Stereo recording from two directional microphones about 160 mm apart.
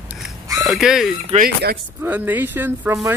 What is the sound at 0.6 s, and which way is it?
Speech, centre (ahead or behind).